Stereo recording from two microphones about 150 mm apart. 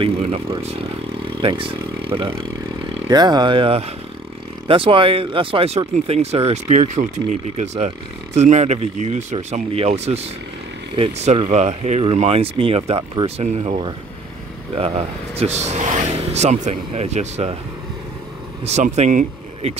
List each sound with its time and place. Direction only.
0.0 s speech: 40° right (ahead or behind)
14.8 s speech: 45° right (ahead or behind)
18.7 s speech: 50° right (ahead or behind)